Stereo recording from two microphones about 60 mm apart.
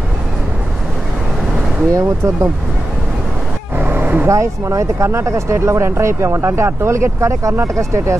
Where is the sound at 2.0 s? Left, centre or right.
Right.